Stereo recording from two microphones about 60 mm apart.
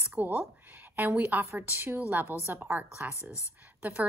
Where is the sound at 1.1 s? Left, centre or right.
Right.